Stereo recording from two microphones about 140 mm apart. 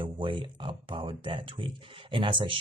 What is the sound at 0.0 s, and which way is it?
Speech, 35° right (ahead or behind).